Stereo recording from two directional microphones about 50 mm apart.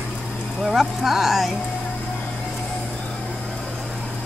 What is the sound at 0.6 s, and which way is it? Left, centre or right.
Speech, centre.